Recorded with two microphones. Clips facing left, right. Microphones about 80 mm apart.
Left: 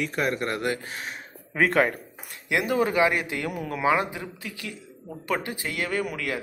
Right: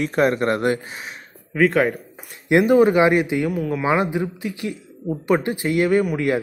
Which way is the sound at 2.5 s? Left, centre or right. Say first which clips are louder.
Right 10 dB; right.